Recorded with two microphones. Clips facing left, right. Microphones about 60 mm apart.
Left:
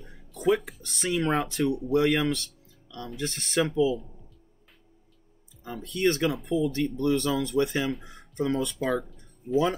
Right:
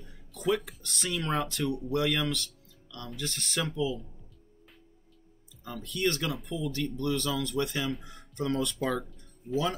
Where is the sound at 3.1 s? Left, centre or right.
Left.